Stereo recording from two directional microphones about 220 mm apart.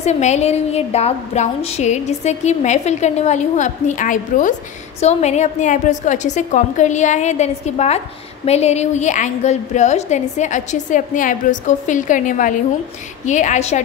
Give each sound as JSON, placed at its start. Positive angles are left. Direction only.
{"t": 0.0, "sound": "a woman's voice", "side_deg": 30}